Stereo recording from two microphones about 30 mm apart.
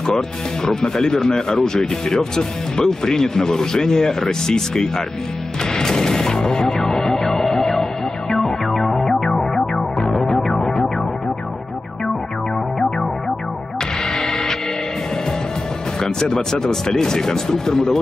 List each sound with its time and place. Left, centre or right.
0.7 s speech: left
5.7 s music: centre
14.0 s music: left
16.0 s music: left
16.5 s speech: left